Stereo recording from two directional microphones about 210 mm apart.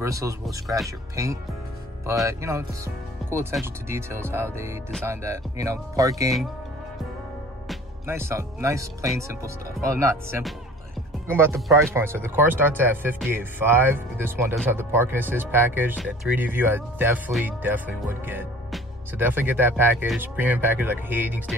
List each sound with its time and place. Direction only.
0.0 s speech: 15° right (ahead or behind)
8.1 s speech: 10° right (ahead or behind)